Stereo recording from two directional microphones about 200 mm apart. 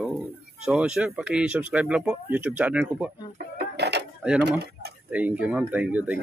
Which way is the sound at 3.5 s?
55° right (ahead or behind).